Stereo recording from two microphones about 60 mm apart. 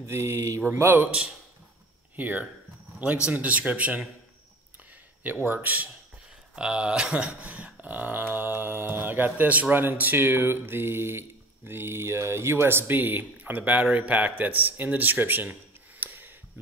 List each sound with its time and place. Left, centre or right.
0.1 s speech: right
0.7 s speech: right
1.0 s speech: centre
5.5 s speech: right
6.5 s speech: centre; by 15.5 s right
16.0 s a sound: right